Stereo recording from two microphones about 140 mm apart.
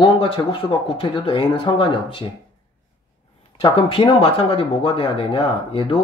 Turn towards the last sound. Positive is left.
turn(degrees=40)  # may be behind; listen again after turning